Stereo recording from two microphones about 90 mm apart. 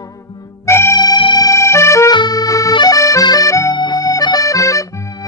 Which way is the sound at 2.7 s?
45° left (ahead or behind).